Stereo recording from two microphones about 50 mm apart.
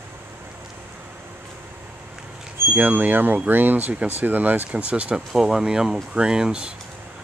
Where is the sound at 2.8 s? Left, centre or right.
Right.